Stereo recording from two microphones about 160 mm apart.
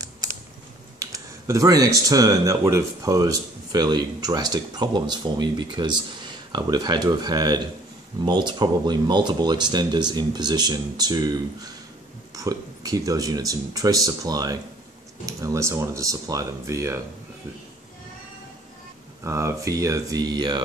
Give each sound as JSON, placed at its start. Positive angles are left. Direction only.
{"t": 0.9, "sound": "speech", "side_deg": -20}
{"t": 19.2, "sound": "speech", "side_deg": -20}